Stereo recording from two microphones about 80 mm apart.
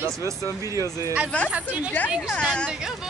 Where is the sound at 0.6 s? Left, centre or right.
Right.